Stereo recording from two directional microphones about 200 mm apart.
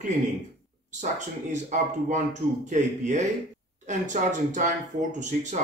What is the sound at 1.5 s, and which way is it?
A man's voice, 35° right (ahead or behind).